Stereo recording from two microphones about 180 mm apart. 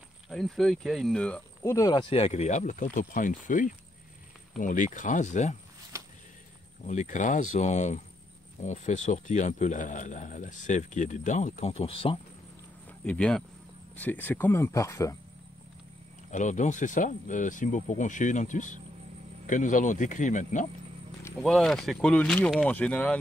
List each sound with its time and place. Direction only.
0.3 s speech: centre (ahead or behind)
1.6 s speech: 15° left (ahead or behind)
2.0 s speech: 35° left (ahead or behind)
5.9 s a sound: 15° right (ahead or behind)
6.9 s speech: 40° left (ahead or behind)
13.0 s speech: 5° left (ahead or behind)
16.3 s speech: 40° left (ahead or behind)
21.2 s speech: 5° left (ahead or behind)